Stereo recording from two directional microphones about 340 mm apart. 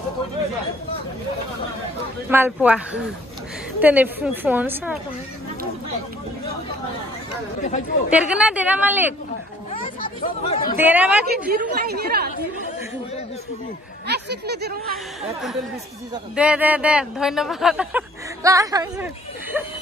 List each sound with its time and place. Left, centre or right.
2.2 s speech: centre
8.1 s speech: centre
9.7 s chatter: left
10.8 s speech: centre
11.2 s a woman's voice: right
14.0 s speech: right
16.3 s speech: centre